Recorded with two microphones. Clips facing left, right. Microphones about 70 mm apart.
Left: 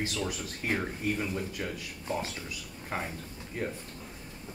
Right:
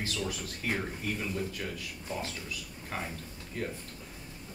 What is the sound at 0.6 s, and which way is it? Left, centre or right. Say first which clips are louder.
Speech: left 3 dB; left.